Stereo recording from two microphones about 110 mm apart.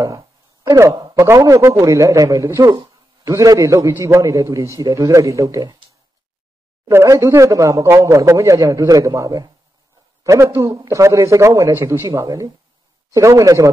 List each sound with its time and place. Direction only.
0.0 s a man's voice: 30° right (ahead or behind)
6.9 s a man's voice: 25° right (ahead or behind)